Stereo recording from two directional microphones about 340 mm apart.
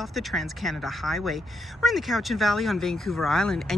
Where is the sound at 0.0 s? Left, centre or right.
Centre.